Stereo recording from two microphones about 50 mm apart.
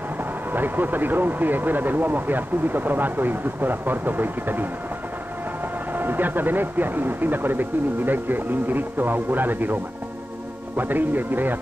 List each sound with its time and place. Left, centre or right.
0.5 s speech: right
5.9 s speech: right
10.8 s speech: right